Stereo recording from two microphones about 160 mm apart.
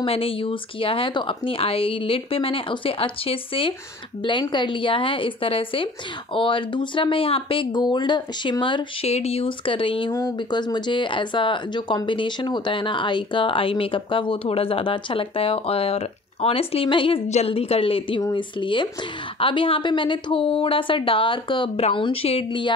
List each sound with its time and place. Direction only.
0.0 s speech: 35° left (ahead or behind)